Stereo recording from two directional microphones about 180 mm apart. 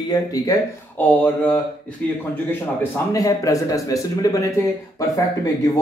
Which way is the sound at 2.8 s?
20° left (ahead or behind).